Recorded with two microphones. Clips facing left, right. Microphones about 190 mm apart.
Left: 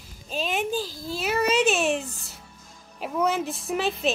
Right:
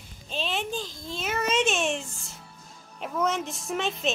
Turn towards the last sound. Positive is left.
turn(degrees=0)  # may be behind; listen again after turning